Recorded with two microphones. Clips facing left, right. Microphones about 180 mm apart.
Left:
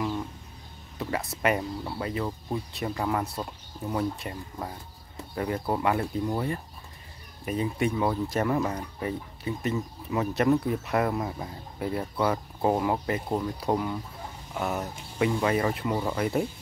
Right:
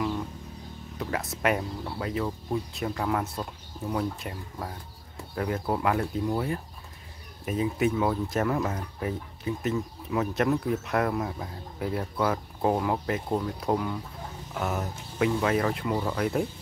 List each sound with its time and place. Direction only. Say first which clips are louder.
0.9 s speech: left 1 dB; centre (ahead or behind)